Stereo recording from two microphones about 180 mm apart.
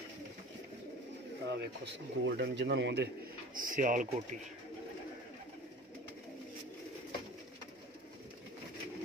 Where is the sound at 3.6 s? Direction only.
45° right (ahead or behind).